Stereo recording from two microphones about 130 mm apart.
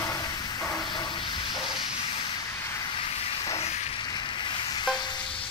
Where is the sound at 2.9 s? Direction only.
50° left (ahead or behind).